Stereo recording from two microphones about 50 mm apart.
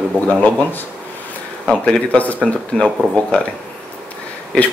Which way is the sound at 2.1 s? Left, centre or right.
Left.